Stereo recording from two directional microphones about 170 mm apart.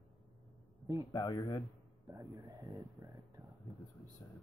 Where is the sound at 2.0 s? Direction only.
25° right (ahead or behind).